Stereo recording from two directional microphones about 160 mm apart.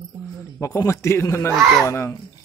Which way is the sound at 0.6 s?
20° left (ahead or behind).